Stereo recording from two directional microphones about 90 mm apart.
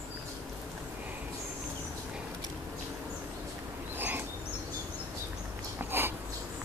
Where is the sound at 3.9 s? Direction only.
20° right (ahead or behind).